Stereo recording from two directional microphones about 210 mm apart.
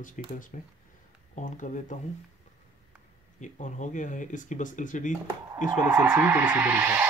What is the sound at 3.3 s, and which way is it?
Speech, 35° left (ahead or behind).